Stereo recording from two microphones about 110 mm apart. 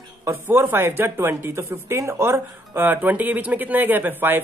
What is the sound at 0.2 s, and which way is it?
Speech, 25° right (ahead or behind).